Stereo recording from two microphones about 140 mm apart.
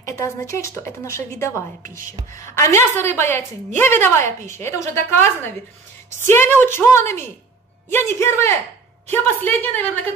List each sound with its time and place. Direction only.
0.0 s a woman's voice: 20° left (ahead or behind)